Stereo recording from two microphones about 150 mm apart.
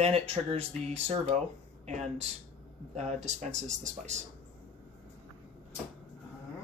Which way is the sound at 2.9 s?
50° right (ahead or behind).